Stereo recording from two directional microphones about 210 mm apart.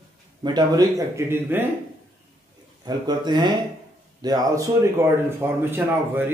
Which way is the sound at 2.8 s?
20° right (ahead or behind).